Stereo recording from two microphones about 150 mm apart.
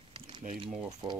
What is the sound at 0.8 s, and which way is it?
Speech, 25° right (ahead or behind).